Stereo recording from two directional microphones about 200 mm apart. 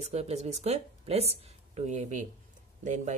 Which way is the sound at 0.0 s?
35° right (ahead or behind).